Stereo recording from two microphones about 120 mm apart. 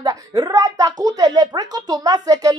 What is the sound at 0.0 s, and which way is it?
A woman's voice, 30° right (ahead or behind).